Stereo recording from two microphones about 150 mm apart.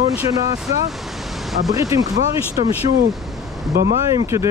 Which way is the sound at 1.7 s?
20° right (ahead or behind).